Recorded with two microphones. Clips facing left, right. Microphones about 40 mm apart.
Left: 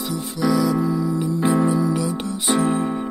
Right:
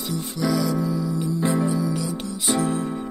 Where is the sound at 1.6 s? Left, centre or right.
Left.